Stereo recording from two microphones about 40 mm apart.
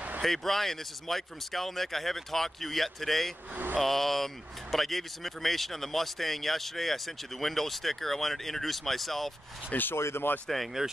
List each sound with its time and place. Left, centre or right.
0.2 s speech: centre
9.7 s speech: left
10.3 s speech: left
10.8 s speech: centre